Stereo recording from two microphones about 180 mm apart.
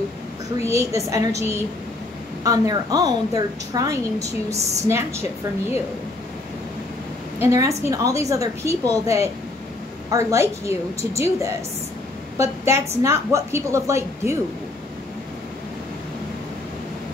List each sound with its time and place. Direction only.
0.7 s a woman's voice: 15° right (ahead or behind)
4.5 s a woman's voice: 40° right (ahead or behind)
4.8 s a woman's voice: 15° right (ahead or behind)
7.4 s a woman's voice: 15° right (ahead or behind)